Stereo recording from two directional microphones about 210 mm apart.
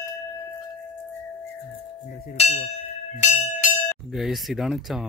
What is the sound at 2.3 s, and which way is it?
Speech, 30° left (ahead or behind).